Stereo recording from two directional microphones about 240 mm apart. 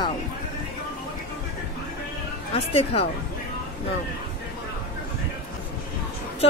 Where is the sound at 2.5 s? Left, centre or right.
Left.